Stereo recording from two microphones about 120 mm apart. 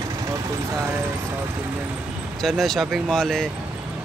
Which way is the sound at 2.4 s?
Centre (ahead or behind).